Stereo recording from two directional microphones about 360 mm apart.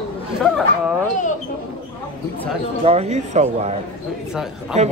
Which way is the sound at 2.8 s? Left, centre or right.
Centre.